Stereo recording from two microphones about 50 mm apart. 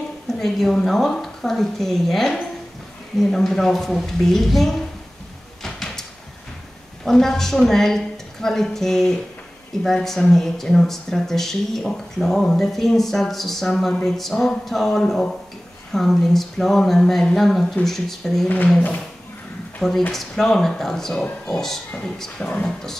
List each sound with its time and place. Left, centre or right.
0.3 s speech: centre
5.6 s sliding door: centre
7.1 s speech: centre
14.3 s speech: centre
20.1 s speech: centre
22.4 s speech: left